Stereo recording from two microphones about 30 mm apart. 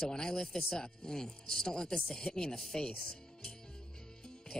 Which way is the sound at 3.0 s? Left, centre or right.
Left.